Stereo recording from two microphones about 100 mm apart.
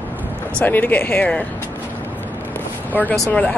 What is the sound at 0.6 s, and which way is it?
Speech, 20° left (ahead or behind).